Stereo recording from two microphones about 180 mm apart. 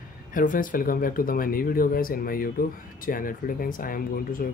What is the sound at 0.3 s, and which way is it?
Speech, 50° left (ahead or behind).